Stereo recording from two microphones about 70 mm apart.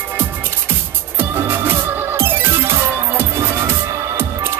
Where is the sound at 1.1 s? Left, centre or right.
Right.